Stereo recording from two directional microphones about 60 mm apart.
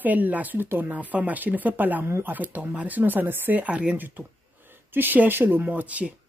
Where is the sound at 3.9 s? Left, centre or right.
Right.